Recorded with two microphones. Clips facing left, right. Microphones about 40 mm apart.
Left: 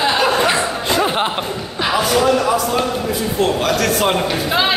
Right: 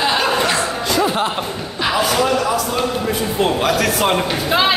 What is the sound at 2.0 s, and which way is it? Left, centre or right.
Speech, centre.